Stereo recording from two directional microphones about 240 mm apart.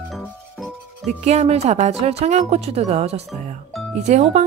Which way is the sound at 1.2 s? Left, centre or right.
Right.